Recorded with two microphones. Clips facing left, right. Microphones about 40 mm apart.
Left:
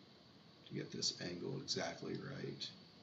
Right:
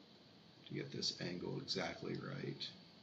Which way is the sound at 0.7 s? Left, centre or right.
Centre.